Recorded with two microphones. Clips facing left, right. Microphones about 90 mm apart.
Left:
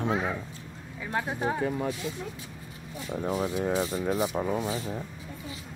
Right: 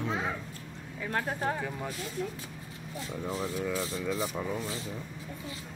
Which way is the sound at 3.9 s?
45° left (ahead or behind).